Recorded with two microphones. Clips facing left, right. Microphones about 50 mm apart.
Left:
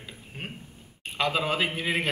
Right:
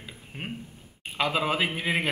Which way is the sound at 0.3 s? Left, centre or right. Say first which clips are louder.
Right 1 dB; centre.